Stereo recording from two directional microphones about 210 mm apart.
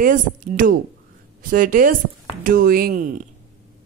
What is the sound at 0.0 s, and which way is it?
Speech, 40° right (ahead or behind).